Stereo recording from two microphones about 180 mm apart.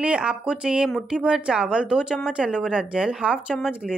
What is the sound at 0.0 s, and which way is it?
A woman's voice, 5° right (ahead or behind).